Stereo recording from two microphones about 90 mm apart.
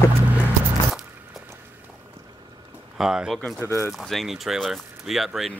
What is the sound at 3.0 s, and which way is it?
Speech, 5° right (ahead or behind).